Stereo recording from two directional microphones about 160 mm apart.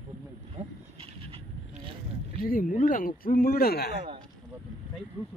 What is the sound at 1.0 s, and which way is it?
Vehicle, 35° right (ahead or behind).